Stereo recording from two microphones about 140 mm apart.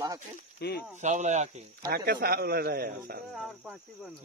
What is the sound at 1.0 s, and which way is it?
Speech, 60° right (ahead or behind).